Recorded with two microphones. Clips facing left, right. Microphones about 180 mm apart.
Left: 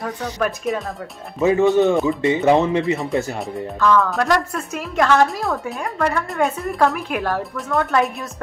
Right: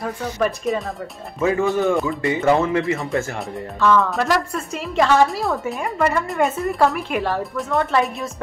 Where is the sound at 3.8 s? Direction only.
Centre (ahead or behind).